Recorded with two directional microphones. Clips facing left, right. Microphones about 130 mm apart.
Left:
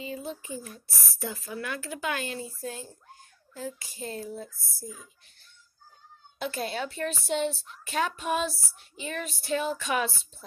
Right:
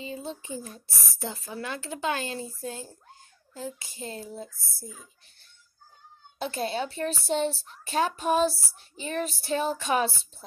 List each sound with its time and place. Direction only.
0.0 s speech: 25° right (ahead or behind)
6.4 s speech: 30° right (ahead or behind)